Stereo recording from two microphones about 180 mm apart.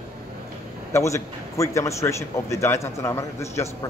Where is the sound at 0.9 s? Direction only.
15° left (ahead or behind).